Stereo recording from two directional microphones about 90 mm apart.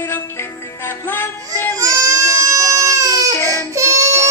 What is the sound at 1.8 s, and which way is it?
Baby cry, 35° right (ahead or behind).